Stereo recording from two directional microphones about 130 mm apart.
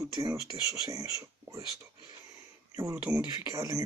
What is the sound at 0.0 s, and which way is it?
Speech, 25° right (ahead or behind).